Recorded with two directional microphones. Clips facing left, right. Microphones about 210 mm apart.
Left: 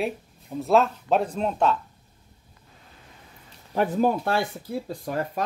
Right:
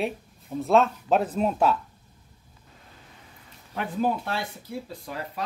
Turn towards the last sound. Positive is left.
turn(degrees=45)  # may be behind; listen again after turning